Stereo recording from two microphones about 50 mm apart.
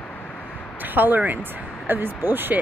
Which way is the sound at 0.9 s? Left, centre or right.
Right.